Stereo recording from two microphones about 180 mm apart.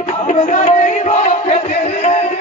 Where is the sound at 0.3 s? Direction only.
40° left (ahead or behind).